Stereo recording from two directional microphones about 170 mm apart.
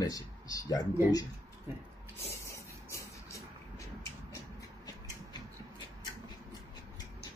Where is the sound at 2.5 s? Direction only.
20° left (ahead or behind).